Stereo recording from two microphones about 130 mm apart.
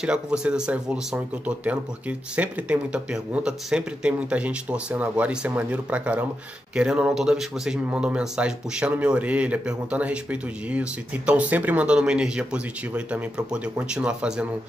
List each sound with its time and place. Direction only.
0.0 s a man's voice: 5° right (ahead or behind)